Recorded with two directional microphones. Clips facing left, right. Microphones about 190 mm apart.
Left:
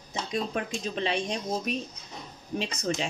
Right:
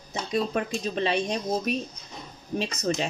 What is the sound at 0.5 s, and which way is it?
Speech, 45° right (ahead or behind).